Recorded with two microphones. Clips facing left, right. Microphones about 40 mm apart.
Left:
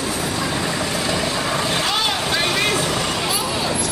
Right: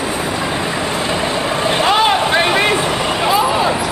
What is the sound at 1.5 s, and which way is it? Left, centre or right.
Vehicle, right.